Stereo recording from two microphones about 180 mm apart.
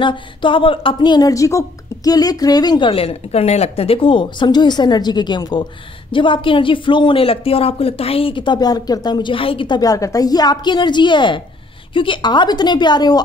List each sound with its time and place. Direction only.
0.0 s a woman's voice: 25° left (ahead or behind)